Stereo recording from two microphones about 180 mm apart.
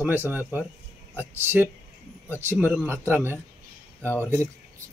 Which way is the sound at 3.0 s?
10° right (ahead or behind).